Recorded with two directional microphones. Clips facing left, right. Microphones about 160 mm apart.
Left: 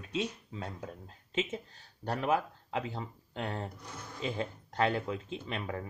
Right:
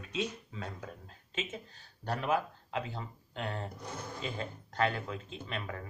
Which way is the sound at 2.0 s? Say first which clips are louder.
Left 1 dB; 20° left (ahead or behind).